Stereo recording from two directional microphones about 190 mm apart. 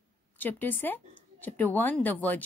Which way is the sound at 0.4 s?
10° left (ahead or behind).